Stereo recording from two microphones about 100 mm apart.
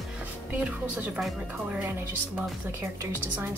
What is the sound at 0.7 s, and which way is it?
Speech, 15° right (ahead or behind).